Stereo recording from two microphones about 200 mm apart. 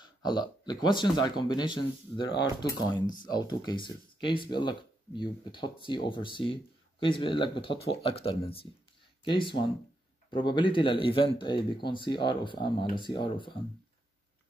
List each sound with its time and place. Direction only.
0.0 s speech: 20° left (ahead or behind)